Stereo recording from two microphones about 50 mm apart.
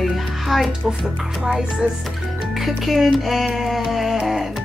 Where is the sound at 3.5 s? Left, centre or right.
Centre.